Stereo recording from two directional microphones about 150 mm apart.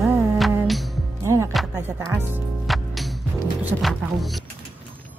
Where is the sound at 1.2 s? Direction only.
20° right (ahead or behind).